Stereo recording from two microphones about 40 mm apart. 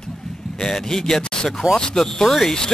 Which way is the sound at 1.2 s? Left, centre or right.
Left.